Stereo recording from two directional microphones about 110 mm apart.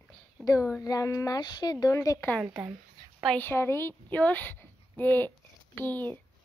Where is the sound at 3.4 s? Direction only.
20° left (ahead or behind).